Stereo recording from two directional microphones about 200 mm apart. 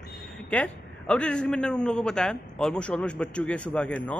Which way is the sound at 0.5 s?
5° left (ahead or behind).